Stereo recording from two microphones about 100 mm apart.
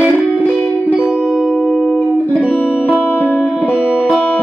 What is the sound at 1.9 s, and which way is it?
Music, 15° left (ahead or behind).